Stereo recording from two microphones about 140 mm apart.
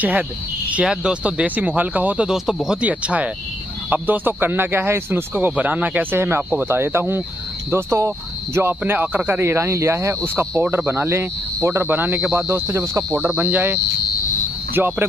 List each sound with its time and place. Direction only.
0.7 s speech: 10° right (ahead or behind)